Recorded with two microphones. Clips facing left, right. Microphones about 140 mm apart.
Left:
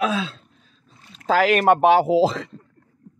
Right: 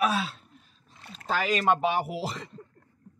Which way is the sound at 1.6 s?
65° left (ahead or behind).